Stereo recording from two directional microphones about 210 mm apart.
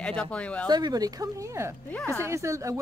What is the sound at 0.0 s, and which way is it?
Speech, 5° left (ahead or behind).